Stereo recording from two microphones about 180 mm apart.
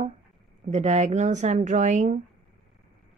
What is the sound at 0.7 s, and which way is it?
A woman's voice, 40° right (ahead or behind).